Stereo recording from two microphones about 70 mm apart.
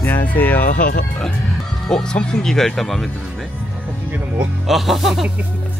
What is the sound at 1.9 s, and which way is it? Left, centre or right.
Speech, centre.